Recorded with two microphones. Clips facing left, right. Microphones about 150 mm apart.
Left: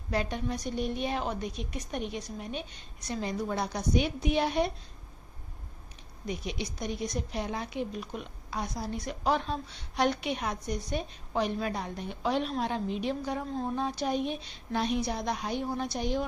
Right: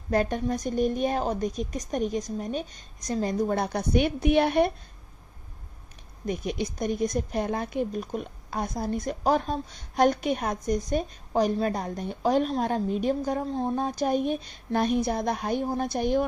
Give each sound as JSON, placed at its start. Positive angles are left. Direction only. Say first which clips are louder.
{"t": 0.1, "sound": "a woman's voice", "louder": "right 6 dB", "side_deg": -45}
{"t": 6.2, "sound": "a woman's voice", "louder": "right 6 dB", "side_deg": -50}
{"t": 13.7, "sound": "a woman's voice", "louder": "right 4 dB", "side_deg": -45}